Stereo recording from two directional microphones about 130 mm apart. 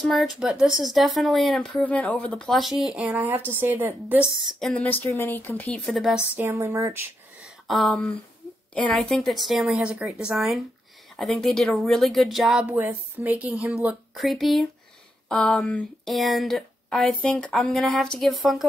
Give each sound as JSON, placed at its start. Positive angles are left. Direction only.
{"t": 0.0, "sound": "speech", "side_deg": 0}
{"t": 3.2, "sound": "a woman's voice", "side_deg": -15}
{"t": 4.5, "sound": "speech", "side_deg": 0}
{"t": 4.8, "sound": "speech", "side_deg": 15}
{"t": 5.9, "sound": "speech", "side_deg": 0}
{"t": 6.3, "sound": "a sound", "side_deg": -20}
{"t": 7.6, "sound": "speech", "side_deg": 0}